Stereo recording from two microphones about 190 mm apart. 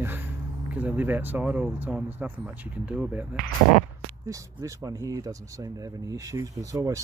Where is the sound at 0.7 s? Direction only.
10° right (ahead or behind).